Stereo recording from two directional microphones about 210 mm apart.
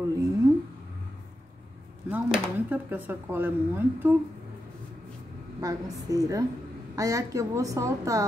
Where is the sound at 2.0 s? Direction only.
10° right (ahead or behind).